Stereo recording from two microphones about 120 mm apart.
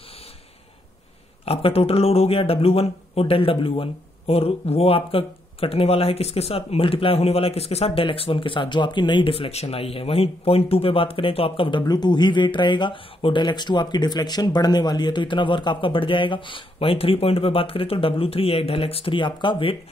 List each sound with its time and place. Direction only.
1.4 s speech: 55° left (ahead or behind)
11.8 s speech: 35° left (ahead or behind)